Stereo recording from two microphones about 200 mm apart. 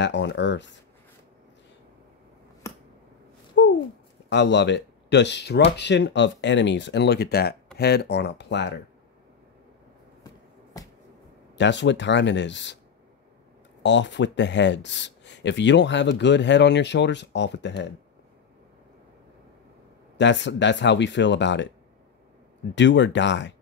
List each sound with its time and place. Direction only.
0.0 s speech: 60° left (ahead or behind)
2.6 s a sound: 15° left (ahead or behind)
3.6 s a sound: 65° left (ahead or behind)
4.3 s speech: 60° left (ahead or behind)
10.2 s a sound: 20° left (ahead or behind)
11.5 s speech: 60° left (ahead or behind)
13.8 s speech: 60° left (ahead or behind)
20.2 s speech: 65° left (ahead or behind)
22.8 s speech: 65° left (ahead or behind)